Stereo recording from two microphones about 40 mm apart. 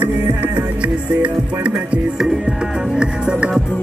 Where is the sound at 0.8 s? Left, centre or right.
Right.